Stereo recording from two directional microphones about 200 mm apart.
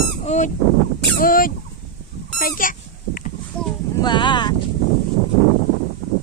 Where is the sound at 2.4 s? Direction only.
45° left (ahead or behind).